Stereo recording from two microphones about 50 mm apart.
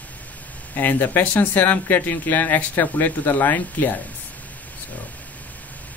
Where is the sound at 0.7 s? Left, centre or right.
Left.